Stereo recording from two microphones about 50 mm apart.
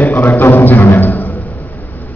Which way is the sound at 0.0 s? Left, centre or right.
Left.